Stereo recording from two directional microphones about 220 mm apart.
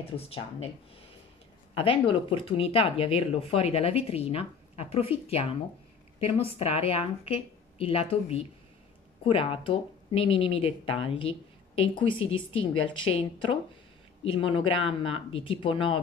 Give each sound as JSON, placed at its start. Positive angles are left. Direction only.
{"t": 1.8, "sound": "speech", "side_deg": 25}